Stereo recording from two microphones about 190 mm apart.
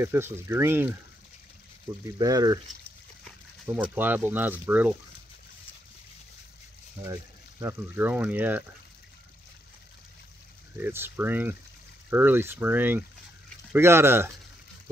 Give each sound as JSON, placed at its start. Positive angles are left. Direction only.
{"t": 0.0, "sound": "speech", "side_deg": -10}
{"t": 2.1, "sound": "speech", "side_deg": -20}
{"t": 3.6, "sound": "speech", "side_deg": -10}
{"t": 7.0, "sound": "speech", "side_deg": -15}
{"t": 10.8, "sound": "speech", "side_deg": -10}